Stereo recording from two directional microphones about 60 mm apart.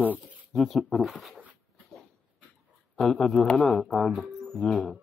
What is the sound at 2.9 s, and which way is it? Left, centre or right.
Speech, centre.